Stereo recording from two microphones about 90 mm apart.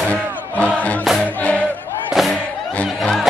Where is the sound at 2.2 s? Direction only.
Centre (ahead or behind).